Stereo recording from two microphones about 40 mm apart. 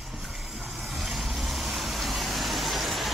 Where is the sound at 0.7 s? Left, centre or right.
Centre.